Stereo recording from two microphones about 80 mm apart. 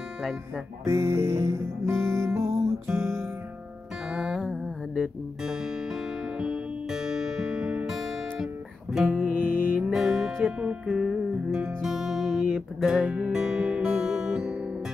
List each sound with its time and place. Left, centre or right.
0.8 s music: right
4.1 s music: centre
5.4 s music: centre
9.2 s music: centre
9.8 s music: centre